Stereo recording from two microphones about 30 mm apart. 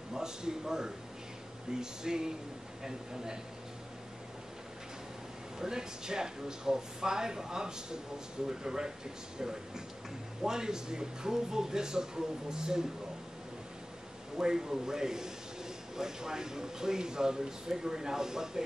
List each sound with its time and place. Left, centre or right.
0.1 s speech: right
5.6 s speech: right
14.3 s speech: centre